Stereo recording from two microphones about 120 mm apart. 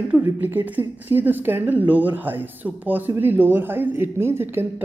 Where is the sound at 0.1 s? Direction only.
15° right (ahead or behind).